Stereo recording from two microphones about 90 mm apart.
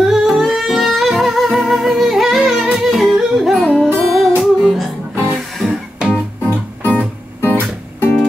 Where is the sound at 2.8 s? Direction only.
Centre (ahead or behind).